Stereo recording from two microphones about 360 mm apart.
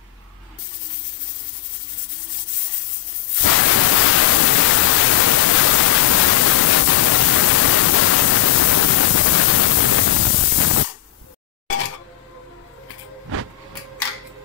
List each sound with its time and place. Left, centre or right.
3.4 s pink noise: left